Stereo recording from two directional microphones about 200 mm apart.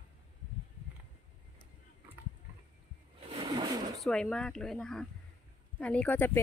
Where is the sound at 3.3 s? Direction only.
25° right (ahead or behind).